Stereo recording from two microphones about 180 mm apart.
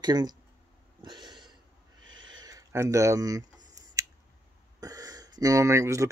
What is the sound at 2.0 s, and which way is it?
Owl, 90° right.